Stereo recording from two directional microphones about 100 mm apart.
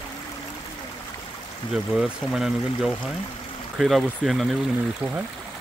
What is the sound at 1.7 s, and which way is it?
Speech, 5° right (ahead or behind).